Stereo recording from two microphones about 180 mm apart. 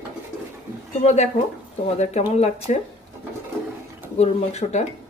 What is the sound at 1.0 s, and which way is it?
Speech, 40° left (ahead or behind).